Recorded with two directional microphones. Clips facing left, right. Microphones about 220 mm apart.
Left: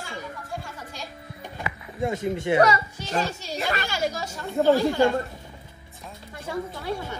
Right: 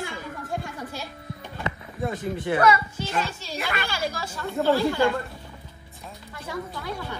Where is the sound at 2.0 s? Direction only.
25° left (ahead or behind).